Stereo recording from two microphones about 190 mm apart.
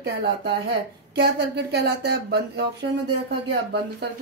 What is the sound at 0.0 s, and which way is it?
Speech, 65° right (ahead or behind).